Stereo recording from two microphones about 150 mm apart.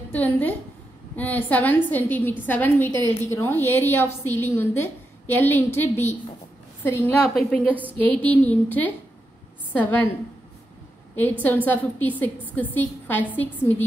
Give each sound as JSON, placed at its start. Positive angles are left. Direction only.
{"t": 0.1, "sound": "a woman's voice", "side_deg": 10}
{"t": 7.2, "sound": "a woman's voice", "side_deg": 0}
{"t": 11.4, "sound": "a woman's voice", "side_deg": 10}